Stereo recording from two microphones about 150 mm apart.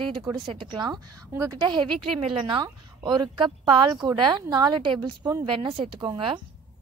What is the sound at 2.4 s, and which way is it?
A woman's voice, 30° right (ahead or behind).